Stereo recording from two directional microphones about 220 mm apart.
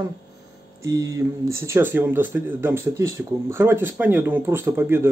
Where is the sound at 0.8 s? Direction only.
15° right (ahead or behind).